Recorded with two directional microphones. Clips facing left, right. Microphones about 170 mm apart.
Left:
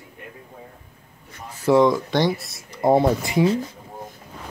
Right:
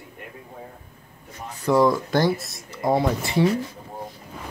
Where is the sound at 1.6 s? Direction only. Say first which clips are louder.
Left 2 dB; centre (ahead or behind).